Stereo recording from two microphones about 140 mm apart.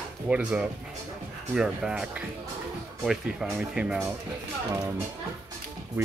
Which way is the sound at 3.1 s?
5° right (ahead or behind).